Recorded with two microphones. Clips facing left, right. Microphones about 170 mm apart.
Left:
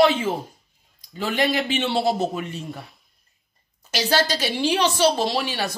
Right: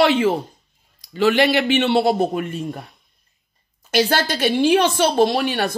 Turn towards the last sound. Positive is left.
turn(degrees=-55)  # may be behind; listen again after turning